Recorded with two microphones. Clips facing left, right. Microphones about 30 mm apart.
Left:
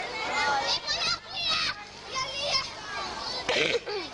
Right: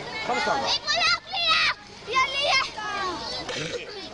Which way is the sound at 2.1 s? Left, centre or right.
Right.